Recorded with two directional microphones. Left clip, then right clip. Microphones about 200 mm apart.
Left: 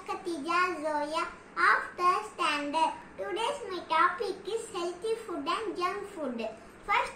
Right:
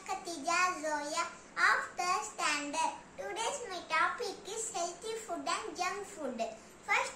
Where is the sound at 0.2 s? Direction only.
30° right (ahead or behind).